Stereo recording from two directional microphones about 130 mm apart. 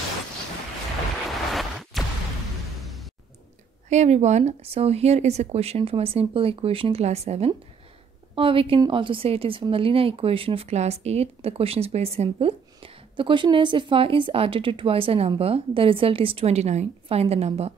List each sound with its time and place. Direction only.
1.5 s music: centre (ahead or behind)
2.8 s a sound: centre (ahead or behind)
3.9 s a woman's voice: 60° right (ahead or behind)